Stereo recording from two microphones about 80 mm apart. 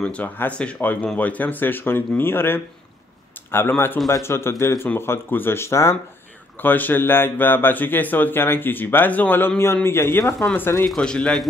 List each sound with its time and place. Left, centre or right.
0.0 s speech: centre; by 5.9 s left
6.6 s speech: left
10.9 s a man's voice: centre